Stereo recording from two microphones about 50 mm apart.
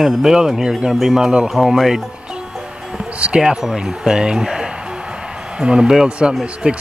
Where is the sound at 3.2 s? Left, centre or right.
Right.